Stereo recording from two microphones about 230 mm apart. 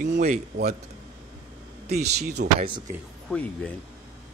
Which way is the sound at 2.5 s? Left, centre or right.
Right.